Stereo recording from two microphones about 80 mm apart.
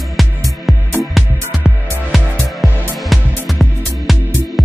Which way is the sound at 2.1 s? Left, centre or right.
Centre.